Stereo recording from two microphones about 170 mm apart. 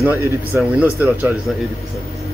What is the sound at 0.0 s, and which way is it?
Speech, 10° right (ahead or behind).